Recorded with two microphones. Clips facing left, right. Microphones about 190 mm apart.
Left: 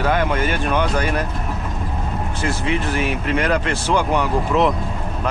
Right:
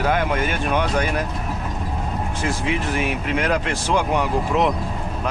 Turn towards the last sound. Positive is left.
turn(degrees=-5)  # may be behind; listen again after turning